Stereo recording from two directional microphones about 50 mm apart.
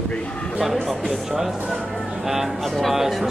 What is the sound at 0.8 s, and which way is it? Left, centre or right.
Speech, centre.